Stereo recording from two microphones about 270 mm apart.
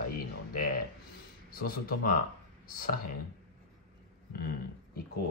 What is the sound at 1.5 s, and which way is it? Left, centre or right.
Speech, left.